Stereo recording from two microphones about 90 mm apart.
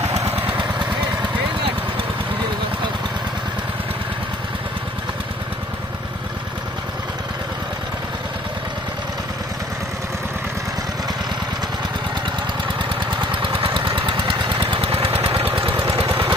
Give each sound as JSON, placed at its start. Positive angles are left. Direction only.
{"t": 13.2, "sound": "vehicle", "side_deg": -75}
{"t": 16.1, "sound": "vehicle", "side_deg": -25}